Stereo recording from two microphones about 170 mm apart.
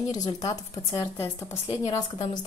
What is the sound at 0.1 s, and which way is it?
A woman's voice, 20° left (ahead or behind).